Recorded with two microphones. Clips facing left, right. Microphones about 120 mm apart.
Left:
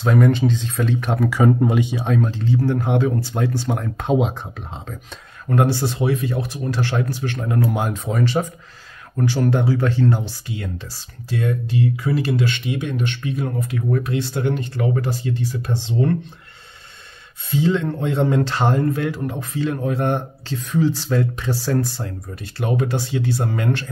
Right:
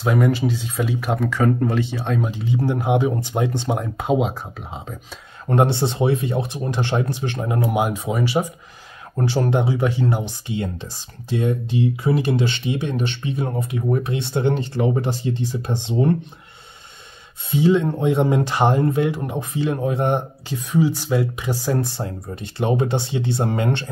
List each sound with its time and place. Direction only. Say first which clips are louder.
0.0 s speech: left 2 dB; 5° right (ahead or behind)
1.3 s speech: left 3 dB; 10° left (ahead or behind)
2.0 s speech: left 3 dB; centre (ahead or behind)
2.3 s speech: left 2 dB; 15° right (ahead or behind)
4.0 s speech: left 1 dB; 5° right (ahead or behind)
5.5 s speech: right 1 dB; 25° right (ahead or behind)
9.1 s speech: even; 25° right (ahead or behind)
17.5 s speech: right 2 dB; 15° right (ahead or behind)